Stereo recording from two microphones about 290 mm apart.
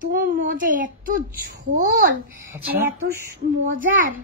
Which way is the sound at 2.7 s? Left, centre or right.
Right.